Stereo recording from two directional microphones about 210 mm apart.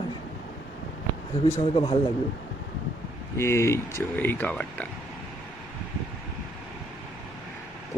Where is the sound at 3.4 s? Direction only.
15° left (ahead or behind).